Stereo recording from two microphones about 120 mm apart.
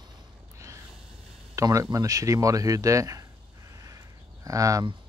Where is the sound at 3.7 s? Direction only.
30° right (ahead or behind).